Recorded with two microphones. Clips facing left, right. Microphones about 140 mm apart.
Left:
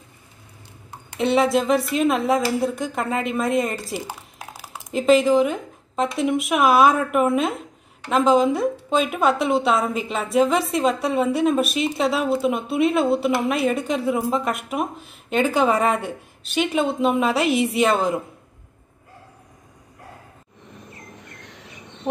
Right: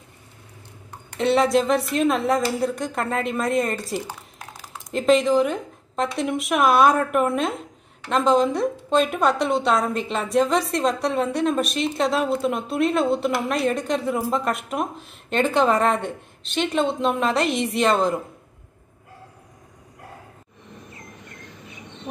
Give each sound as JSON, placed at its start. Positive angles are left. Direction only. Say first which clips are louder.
{"t": 1.1, "sound": "speech", "louder": "even", "side_deg": 0}
{"t": 21.4, "sound": "bird", "louder": "right 1 dB", "side_deg": 75}